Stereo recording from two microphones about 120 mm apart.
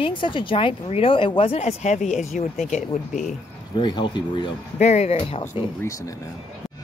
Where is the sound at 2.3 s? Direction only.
90° left.